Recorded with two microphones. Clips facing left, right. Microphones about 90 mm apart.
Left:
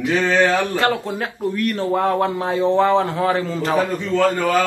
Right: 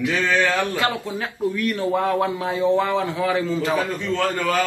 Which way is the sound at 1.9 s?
35° left (ahead or behind).